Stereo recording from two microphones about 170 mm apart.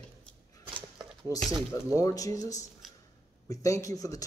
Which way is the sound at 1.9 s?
20° left (ahead or behind).